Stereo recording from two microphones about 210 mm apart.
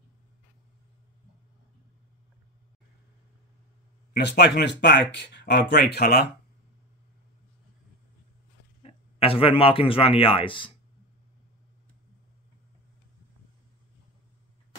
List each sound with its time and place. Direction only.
4.1 s speech: 55° left (ahead or behind)
8.8 s speech: 25° left (ahead or behind)